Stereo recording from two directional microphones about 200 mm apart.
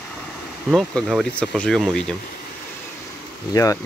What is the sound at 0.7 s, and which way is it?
Speech, centre (ahead or behind).